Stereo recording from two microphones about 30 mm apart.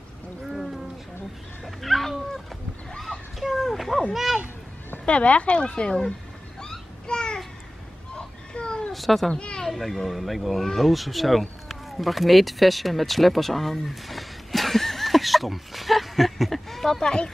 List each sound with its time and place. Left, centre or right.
0.5 s a sound: centre
1.6 s a sound: centre
4.1 s speech: centre
5.0 s speech: left
7.1 s babbling: left
8.2 s children playing: left
8.9 s speech: centre
9.3 s speech: left
9.8 s speech: centre
10.6 s speech: centre